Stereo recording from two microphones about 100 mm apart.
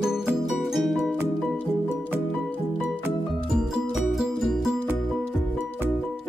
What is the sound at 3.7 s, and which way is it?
Music, 5° right (ahead or behind).